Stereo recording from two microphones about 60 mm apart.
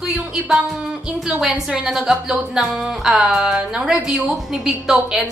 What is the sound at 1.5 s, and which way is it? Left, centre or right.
Speech, centre.